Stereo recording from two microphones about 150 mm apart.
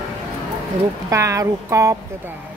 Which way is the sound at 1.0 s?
20° right (ahead or behind).